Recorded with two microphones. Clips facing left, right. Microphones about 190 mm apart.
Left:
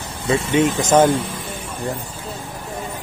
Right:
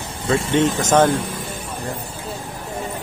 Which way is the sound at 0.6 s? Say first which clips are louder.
Left 1 dB; 10° left (ahead or behind).